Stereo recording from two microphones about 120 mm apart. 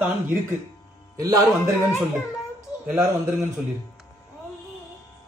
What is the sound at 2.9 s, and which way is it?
Speech, 20° right (ahead or behind).